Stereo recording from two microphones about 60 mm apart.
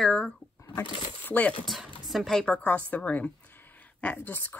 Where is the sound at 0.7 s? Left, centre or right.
Left.